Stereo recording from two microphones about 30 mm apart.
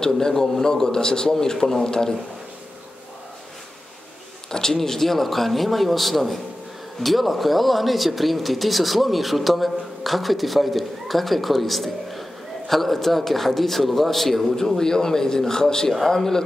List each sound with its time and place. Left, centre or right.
0.0 s a man's voice: left
4.5 s a sound: centre
4.7 s speech: centre
14.8 s a man's voice: centre